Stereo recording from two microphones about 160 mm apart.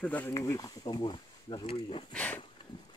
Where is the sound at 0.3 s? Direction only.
20° left (ahead or behind).